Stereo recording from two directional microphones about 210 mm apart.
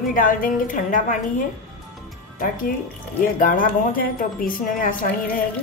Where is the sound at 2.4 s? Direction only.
40° left (ahead or behind).